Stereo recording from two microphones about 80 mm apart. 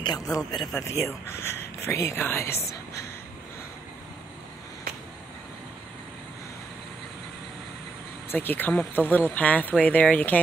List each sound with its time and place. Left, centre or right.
0.2 s speech: left
0.7 s speech: left
2.7 s a sound: left
8.3 s speech: left